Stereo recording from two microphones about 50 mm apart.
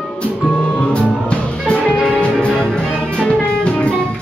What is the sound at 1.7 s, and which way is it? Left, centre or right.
Music, left.